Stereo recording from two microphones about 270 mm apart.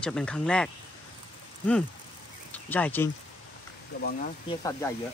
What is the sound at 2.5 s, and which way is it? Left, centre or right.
Speech, centre.